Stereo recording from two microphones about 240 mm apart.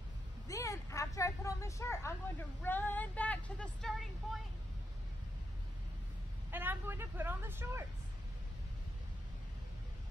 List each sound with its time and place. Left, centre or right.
0.5 s a sound: centre
2.6 s speech: centre
6.5 s a woman's voice: centre